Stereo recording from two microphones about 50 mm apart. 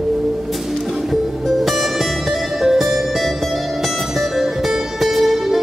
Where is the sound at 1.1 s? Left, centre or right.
Centre.